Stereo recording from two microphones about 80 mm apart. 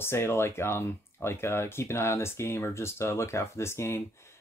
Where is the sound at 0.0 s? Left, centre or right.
Left.